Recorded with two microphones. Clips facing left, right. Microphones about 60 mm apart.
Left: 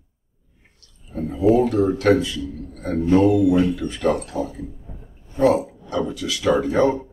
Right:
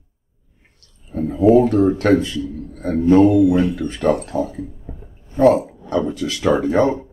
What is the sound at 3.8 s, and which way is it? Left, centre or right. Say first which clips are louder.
Speech: right 3 dB; right.